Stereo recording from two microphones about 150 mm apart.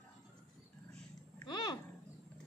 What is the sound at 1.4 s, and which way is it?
Speech, 30° left (ahead or behind).